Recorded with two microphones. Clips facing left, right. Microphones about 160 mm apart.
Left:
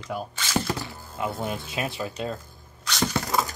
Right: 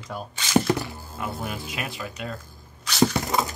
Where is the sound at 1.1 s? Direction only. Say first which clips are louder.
Left 3 dB; 20° left (ahead or behind).